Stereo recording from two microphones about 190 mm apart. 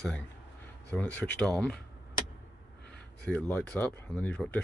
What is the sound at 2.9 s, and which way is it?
Speech, 10° left (ahead or behind).